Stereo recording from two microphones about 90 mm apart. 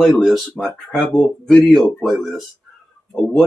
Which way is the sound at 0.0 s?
Centre (ahead or behind).